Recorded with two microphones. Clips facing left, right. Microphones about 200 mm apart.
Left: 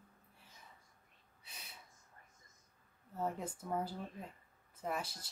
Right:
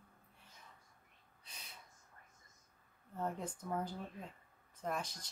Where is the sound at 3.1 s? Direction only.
5° left (ahead or behind).